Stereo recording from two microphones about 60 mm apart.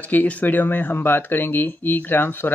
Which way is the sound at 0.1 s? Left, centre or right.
Left.